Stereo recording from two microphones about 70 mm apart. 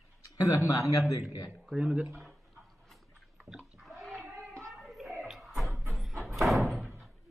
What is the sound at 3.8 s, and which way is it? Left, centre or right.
Bathtub, centre.